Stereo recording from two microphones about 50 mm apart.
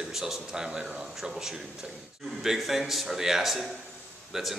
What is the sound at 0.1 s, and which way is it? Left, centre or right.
A man's voice, centre.